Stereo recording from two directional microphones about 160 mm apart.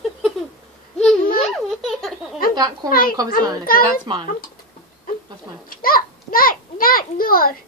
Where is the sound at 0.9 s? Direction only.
Centre (ahead or behind).